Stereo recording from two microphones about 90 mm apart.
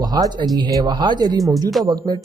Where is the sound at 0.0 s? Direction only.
50° right (ahead or behind).